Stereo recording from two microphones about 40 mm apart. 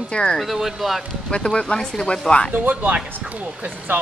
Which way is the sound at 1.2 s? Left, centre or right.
Left.